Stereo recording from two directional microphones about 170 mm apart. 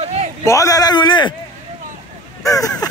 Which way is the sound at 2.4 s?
20° left (ahead or behind).